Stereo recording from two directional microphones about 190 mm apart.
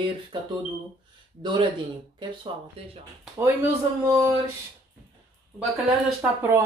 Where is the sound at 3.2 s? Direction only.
10° right (ahead or behind).